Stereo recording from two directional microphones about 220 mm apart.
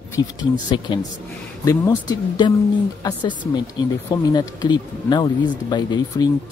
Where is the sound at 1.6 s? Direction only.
15° left (ahead or behind).